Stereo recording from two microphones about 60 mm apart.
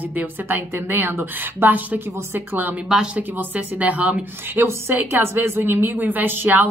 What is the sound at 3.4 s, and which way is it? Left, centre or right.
Speech, right.